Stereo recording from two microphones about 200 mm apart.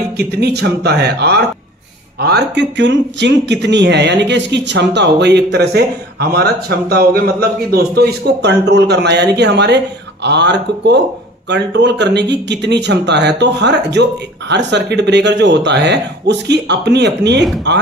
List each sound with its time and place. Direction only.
0.2 s speech: 55° right (ahead or behind)